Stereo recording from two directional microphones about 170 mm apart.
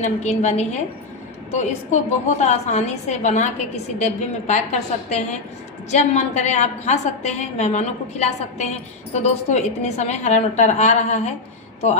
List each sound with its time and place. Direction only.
0.0 s a woman's voice: 40° left (ahead or behind)
5.9 s a woman's voice: 40° left (ahead or behind)